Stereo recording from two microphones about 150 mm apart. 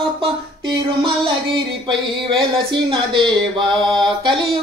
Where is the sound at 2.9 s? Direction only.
35° right (ahead or behind).